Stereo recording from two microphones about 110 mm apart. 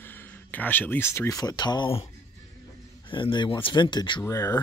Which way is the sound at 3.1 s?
50° left (ahead or behind).